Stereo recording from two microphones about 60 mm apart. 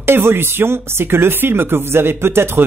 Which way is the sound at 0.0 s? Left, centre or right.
Right.